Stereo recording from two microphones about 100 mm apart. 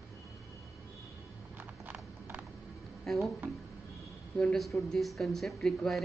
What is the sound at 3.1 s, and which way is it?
Speech, 5° left (ahead or behind).